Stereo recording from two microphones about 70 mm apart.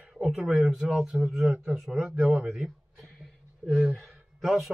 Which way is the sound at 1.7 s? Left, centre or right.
Centre.